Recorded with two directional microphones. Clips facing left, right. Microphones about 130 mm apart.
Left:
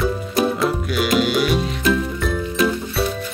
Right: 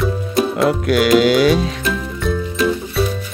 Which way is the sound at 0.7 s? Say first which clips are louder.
Right 7 dB; 90° right.